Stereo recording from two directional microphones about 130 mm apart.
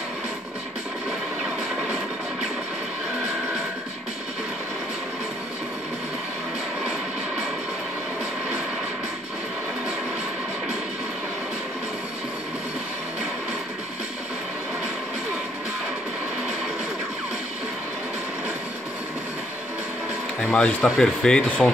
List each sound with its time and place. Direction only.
20.5 s speech: 5° left (ahead or behind)